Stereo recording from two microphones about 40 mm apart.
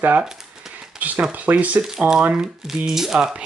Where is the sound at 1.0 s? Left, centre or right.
Right.